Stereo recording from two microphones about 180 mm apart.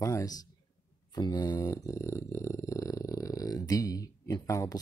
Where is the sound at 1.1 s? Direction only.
20° left (ahead or behind).